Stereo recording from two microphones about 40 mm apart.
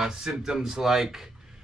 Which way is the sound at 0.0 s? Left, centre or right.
Centre.